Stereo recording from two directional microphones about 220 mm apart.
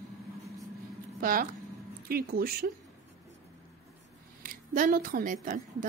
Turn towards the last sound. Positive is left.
turn(degrees=-35)  # may be behind; listen again after turning